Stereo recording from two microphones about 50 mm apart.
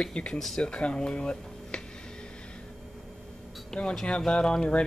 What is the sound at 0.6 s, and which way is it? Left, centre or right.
Speech, left.